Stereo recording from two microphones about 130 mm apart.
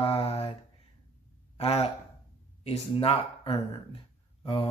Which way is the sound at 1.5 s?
50° left (ahead or behind).